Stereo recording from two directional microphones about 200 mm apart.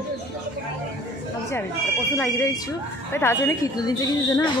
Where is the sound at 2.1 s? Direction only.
10° left (ahead or behind).